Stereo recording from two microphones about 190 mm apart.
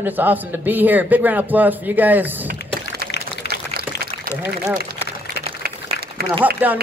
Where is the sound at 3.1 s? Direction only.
60° left (ahead or behind).